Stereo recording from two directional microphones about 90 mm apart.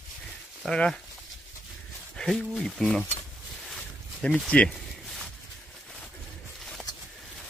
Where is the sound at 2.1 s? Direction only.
5° left (ahead or behind).